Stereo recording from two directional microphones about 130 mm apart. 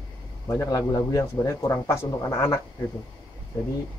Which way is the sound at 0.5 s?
25° left (ahead or behind).